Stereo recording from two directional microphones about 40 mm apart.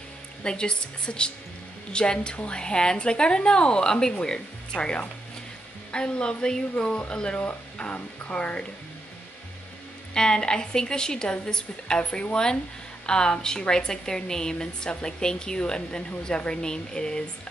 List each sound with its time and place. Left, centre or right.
0.4 s a woman's voice: left
10.1 s a woman's voice: left